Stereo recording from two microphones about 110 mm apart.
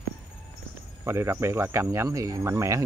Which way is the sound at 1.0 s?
25° right (ahead or behind).